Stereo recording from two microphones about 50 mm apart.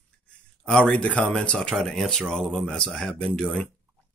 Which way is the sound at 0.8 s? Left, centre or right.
Left.